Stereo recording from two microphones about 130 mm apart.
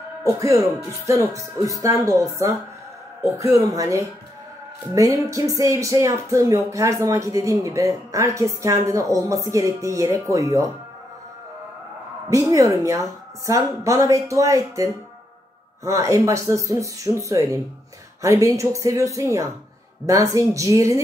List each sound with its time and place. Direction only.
0.2 s speech: 25° right (ahead or behind)
12.3 s speech: 25° right (ahead or behind)